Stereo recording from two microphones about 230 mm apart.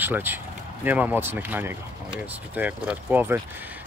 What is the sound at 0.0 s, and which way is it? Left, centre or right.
Speech, centre.